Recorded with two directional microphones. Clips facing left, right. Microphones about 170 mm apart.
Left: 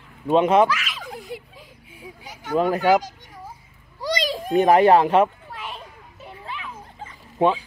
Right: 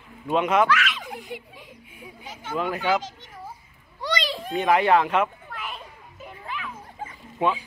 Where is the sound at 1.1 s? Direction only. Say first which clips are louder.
Left 2 dB; 35° left (ahead or behind).